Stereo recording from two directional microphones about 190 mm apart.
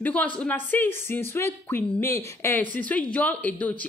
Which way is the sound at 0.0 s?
5° left (ahead or behind).